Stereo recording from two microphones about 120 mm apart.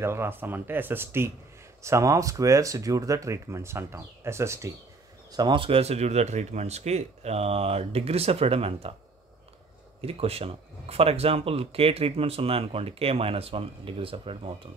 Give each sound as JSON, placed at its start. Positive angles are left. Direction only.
{"t": 0.0, "sound": "speech", "side_deg": -20}
{"t": 5.3, "sound": "speech", "side_deg": -40}
{"t": 10.0, "sound": "speech", "side_deg": -55}